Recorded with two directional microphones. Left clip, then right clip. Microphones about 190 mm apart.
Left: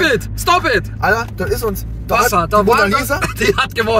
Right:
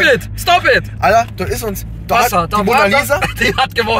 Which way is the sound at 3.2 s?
30° left (ahead or behind).